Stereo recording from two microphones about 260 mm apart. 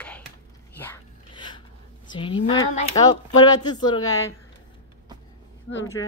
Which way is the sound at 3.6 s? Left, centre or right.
Centre.